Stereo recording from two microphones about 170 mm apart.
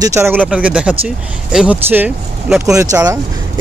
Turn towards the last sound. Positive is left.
turn(degrees=-20)  # may be behind; listen again after turning